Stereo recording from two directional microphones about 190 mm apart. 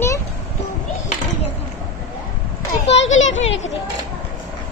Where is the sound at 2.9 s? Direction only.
80° left.